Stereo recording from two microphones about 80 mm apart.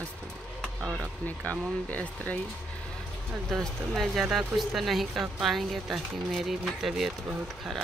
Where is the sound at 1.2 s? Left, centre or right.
Centre.